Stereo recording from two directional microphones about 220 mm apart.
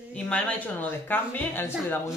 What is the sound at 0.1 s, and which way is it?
Speech, 5° left (ahead or behind).